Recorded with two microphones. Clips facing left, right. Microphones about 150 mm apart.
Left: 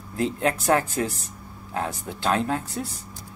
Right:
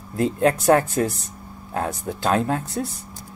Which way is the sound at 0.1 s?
35° right (ahead or behind).